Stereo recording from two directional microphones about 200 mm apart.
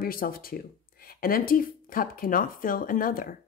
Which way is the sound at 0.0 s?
45° left (ahead or behind).